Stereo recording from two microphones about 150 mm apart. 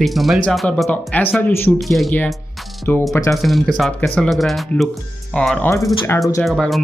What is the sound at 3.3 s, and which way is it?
Speech, centre (ahead or behind).